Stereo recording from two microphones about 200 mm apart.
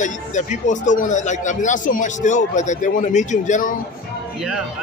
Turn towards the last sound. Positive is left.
turn(degrees=40)  # may be behind; listen again after turning